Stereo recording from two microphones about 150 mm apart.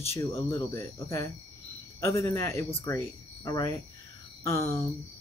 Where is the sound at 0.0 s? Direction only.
15° left (ahead or behind).